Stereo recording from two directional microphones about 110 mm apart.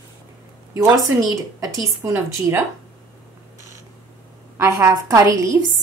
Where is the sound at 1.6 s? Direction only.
25° right (ahead or behind).